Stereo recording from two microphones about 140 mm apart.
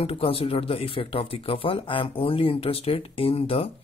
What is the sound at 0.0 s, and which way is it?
Speech, 40° left (ahead or behind).